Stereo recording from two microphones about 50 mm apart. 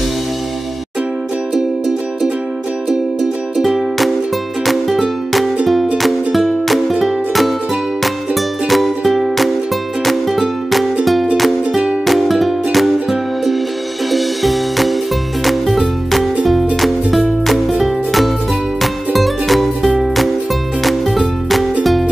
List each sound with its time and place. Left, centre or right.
3.5 s music: centre
12.1 s music: centre
16.8 s music: centre